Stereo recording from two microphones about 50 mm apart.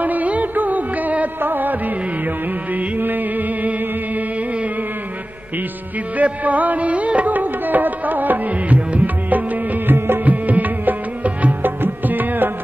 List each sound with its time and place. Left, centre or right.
0.0 s music: right
6.1 s music: right
9.9 s music: right
10.2 s music: right